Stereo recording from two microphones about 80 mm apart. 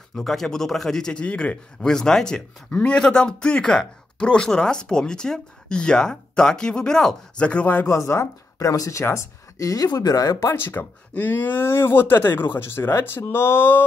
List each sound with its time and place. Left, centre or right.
0.1 s speech: centre
7.8 s speech: left
10.5 s speech: left